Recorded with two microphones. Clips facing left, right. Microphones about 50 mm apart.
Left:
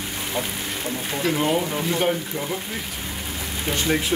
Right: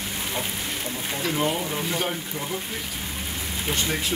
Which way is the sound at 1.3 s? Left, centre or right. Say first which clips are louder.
Left 4 dB; centre.